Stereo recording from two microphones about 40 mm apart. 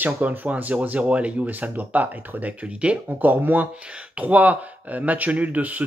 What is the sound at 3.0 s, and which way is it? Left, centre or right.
Speech, right.